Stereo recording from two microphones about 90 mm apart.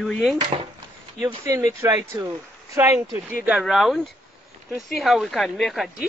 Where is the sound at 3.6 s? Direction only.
Centre (ahead or behind).